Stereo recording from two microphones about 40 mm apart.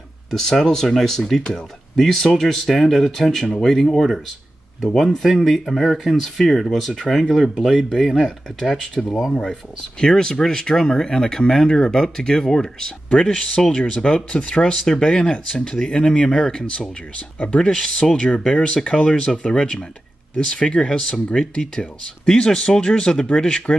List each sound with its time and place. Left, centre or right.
0.3 s speech: centre
4.9 s speech: centre
9.3 s speech: centre